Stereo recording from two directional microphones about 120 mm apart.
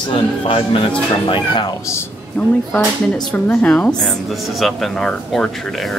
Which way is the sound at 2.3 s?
10° left (ahead or behind).